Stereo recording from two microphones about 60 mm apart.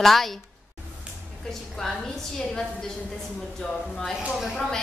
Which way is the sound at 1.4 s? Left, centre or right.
Centre.